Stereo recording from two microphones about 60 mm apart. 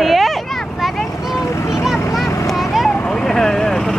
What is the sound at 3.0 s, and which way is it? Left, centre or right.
Vehicle, centre.